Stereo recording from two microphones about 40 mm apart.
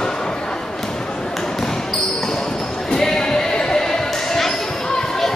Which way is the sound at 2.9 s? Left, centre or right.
Centre.